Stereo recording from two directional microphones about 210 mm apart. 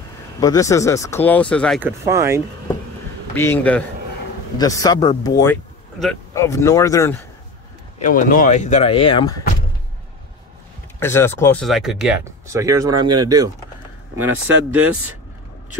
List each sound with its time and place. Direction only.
0.4 s speech: 15° left (ahead or behind)
1.8 s speech: 10° right (ahead or behind)
3.3 s speech: 10° left (ahead or behind)
8.0 s speech: 40° left (ahead or behind); by 9.4 s 20° left (ahead or behind)
11.0 s speech: 10° left (ahead or behind)
11.6 s speech: centre (ahead or behind)
12.4 s speech: 15° right (ahead or behind)